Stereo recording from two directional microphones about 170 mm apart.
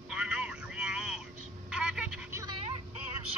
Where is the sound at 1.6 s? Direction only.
5° right (ahead or behind).